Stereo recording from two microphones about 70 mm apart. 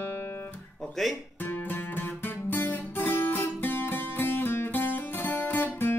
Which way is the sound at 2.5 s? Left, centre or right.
Left.